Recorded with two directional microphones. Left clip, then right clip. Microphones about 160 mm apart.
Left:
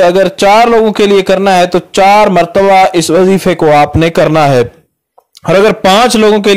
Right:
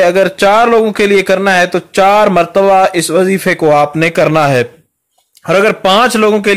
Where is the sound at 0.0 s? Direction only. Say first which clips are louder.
Left 2 dB; 25° left (ahead or behind).